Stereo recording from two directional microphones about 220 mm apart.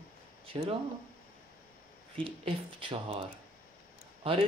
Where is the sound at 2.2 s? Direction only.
25° right (ahead or behind).